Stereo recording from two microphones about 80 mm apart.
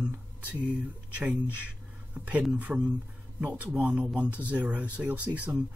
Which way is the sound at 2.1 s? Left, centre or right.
Centre.